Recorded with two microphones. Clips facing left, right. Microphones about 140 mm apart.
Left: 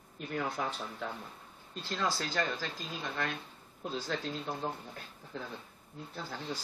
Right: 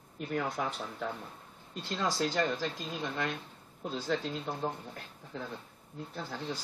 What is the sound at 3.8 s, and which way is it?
Speech, centre (ahead or behind).